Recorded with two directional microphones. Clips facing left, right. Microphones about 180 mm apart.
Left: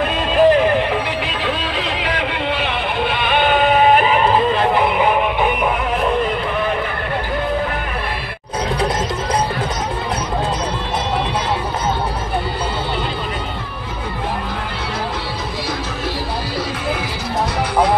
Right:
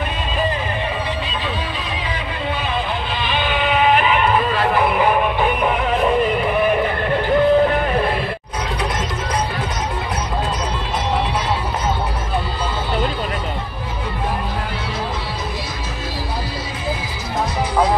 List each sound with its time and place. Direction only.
0.0 s music: 85° left; by 5.2 s 20° left (ahead or behind)